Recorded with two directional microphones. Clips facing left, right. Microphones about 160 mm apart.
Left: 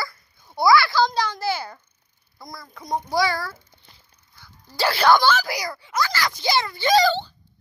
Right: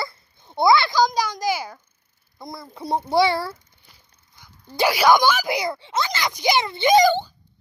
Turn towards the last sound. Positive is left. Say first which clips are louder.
# right 3 dB
turn(degrees=-15)  # may be behind; listen again after turning